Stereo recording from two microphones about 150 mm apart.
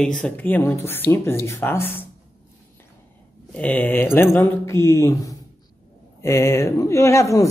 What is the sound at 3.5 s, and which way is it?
Speech, 10° left (ahead or behind).